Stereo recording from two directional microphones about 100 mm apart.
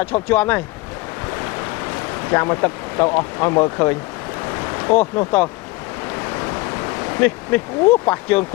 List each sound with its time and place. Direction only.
0.1 s speech: 20° left (ahead or behind)
2.3 s speech: 25° left (ahead or behind)
4.8 s speech: 25° left (ahead or behind)
7.2 s speech: 15° left (ahead or behind)